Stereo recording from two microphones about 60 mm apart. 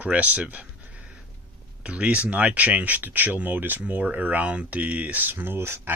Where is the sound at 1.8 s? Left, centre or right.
Right.